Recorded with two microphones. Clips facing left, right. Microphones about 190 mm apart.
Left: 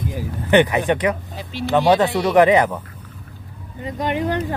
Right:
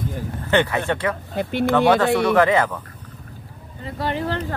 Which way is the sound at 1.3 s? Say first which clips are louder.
Right 6 dB; 55° right (ahead or behind).